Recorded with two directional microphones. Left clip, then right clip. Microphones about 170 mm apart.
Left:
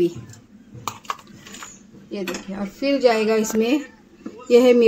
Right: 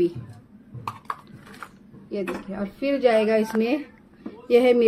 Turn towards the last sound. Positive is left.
turn(degrees=40)  # may be behind; listen again after turning